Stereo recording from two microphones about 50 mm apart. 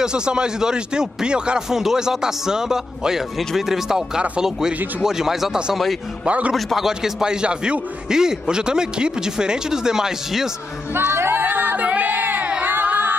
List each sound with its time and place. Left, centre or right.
0.0 s a man's voice: centre
6.2 s a man's voice: right
6.5 s a man's voice: centre
6.9 s a man's voice: centre
11.0 s music: right
11.4 s music: right
11.9 s child singing: right
12.6 s singing: right